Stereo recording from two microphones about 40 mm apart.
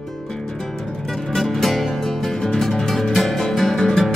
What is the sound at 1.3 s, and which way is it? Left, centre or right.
Music, centre.